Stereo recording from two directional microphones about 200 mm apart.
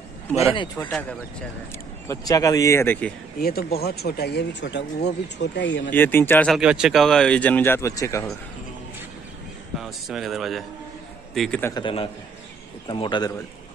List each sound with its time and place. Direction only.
0.7 s speech: 5° left (ahead or behind)
2.0 s speech: 15° left (ahead or behind)
3.3 s speech: 50° left (ahead or behind)
5.9 s speech: 10° left (ahead or behind)
6.5 s speech: 5° right (ahead or behind); by 8.3 s 15° left (ahead or behind)
9.8 s a man's voice: centre (ahead or behind)
11.6 s a man's voice: 20° left (ahead or behind)